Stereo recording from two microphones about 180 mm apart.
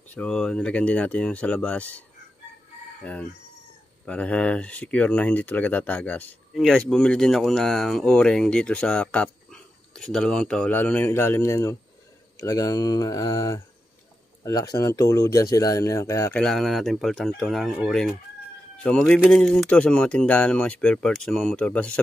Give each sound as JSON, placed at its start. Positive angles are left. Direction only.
{"t": 0.1, "sound": "speech", "side_deg": 5}
{"t": 3.0, "sound": "crowing", "side_deg": 5}
{"t": 4.0, "sound": "speech", "side_deg": 5}